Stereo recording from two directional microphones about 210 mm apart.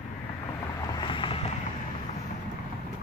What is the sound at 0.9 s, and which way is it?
Vehicle, 25° left (ahead or behind).